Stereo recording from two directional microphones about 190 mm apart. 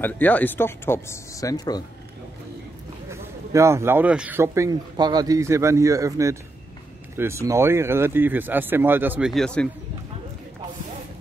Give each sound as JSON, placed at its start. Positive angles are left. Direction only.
{"t": 0.0, "sound": "speech", "side_deg": 10}
{"t": 3.1, "sound": "a man's voice", "side_deg": -15}
{"t": 9.3, "sound": "a man's voice", "side_deg": 5}